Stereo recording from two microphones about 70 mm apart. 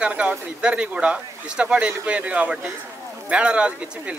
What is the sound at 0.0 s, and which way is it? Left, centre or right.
Speech, centre.